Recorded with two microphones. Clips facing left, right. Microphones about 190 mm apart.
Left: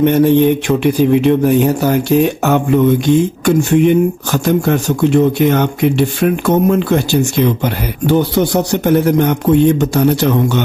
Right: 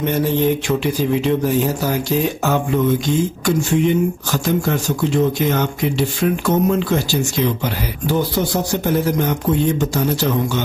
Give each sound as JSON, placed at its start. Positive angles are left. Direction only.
{"t": 0.0, "sound": "speech", "side_deg": 60}